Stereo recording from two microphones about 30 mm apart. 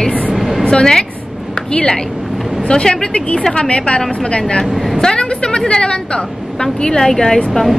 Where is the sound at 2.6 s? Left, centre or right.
Left.